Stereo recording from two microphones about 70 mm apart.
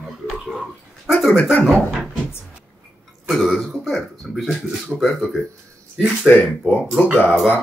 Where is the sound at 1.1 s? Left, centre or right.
Centre.